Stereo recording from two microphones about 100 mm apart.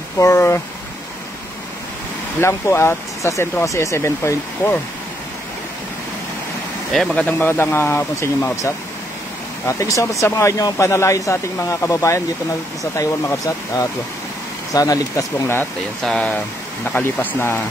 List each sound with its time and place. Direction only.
0.2 s speech: 30° left (ahead or behind)
2.4 s speech: 30° left (ahead or behind)
6.9 s speech: 5° left (ahead or behind)
7.2 s speech: 20° left (ahead or behind)
9.7 s speech: 30° left (ahead or behind)
16.0 s speech: 5° left (ahead or behind)
16.8 s speech: 15° left (ahead or behind)